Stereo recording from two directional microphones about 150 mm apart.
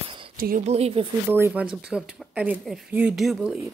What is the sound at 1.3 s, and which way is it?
Speech, 10° right (ahead or behind).